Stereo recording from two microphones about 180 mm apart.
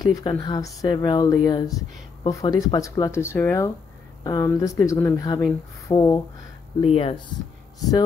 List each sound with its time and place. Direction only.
0.0 s speech: 20° left (ahead or behind)